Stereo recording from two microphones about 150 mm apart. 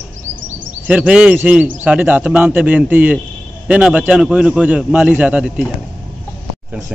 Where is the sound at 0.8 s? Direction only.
5° right (ahead or behind).